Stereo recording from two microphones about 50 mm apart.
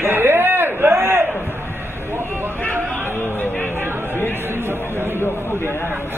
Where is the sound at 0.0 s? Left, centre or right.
Right.